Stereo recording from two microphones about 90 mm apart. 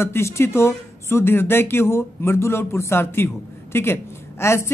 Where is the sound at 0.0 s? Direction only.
30° left (ahead or behind).